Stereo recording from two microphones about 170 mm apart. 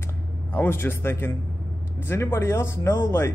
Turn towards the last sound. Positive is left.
turn(degrees=15)  # may be behind; listen again after turning